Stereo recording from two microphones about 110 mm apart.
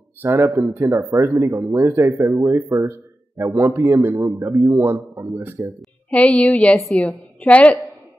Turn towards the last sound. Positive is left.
turn(degrees=10)  # may be behind; listen again after turning